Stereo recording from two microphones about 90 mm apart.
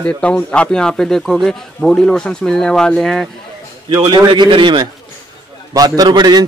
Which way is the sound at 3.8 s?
50° right (ahead or behind).